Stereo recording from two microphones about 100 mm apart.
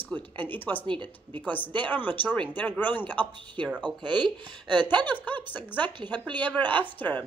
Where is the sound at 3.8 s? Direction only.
50° right (ahead or behind).